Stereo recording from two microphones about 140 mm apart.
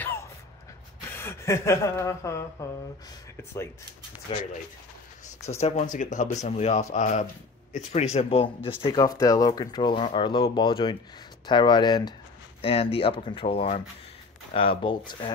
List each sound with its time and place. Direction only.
0.0 s a sound: 15° left (ahead or behind)
1.1 s speech: 20° left (ahead or behind)
4.3 s speech: 35° left (ahead or behind)
5.5 s speech: 50° left (ahead or behind)
9.0 s speech: 25° left (ahead or behind)
12.6 s speech: 45° left (ahead or behind)